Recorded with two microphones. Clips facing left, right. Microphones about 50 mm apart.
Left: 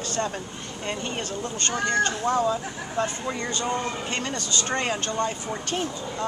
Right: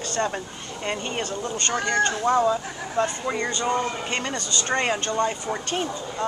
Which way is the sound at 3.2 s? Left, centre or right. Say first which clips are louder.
Right 3 dB; right.